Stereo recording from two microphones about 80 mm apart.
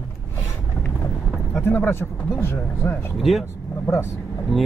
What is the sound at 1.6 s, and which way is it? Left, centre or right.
Speech, left.